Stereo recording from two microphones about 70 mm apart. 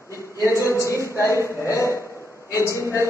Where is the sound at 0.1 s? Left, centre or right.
Left.